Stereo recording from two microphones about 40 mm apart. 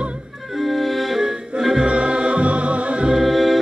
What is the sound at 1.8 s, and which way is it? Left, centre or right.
Music, right.